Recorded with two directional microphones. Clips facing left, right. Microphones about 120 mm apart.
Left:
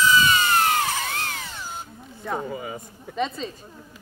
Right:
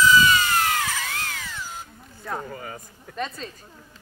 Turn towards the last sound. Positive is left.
turn(degrees=0)  # may be behind; listen again after turning